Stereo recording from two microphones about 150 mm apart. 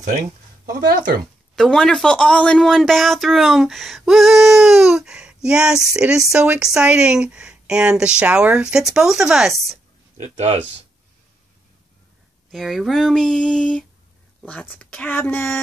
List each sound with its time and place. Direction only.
0.7 s speech: 65° right (ahead or behind)
1.5 s a woman's voice: 5° left (ahead or behind)
10.1 s speech: 45° right (ahead or behind)
12.4 s a woman's voice: centre (ahead or behind)